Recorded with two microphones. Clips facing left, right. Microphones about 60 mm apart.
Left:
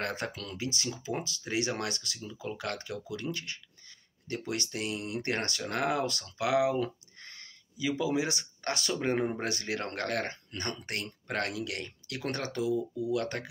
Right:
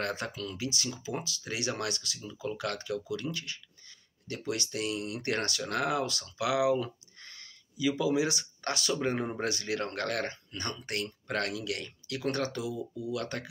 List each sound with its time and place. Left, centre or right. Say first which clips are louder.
0.0 s speech: right 1 dB; left